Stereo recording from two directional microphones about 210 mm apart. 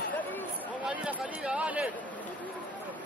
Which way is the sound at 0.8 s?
5° right (ahead or behind).